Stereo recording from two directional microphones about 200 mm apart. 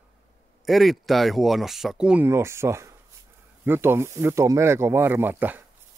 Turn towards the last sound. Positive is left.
turn(degrees=-10)  # may be behind; listen again after turning